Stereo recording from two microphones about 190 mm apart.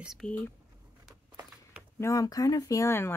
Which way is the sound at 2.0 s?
15° left (ahead or behind).